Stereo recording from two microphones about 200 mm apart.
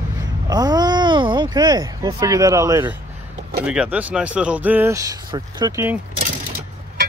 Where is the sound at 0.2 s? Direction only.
20° right (ahead or behind).